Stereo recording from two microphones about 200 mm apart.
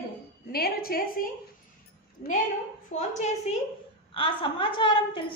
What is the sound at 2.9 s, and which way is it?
A woman's voice, 35° left (ahead or behind).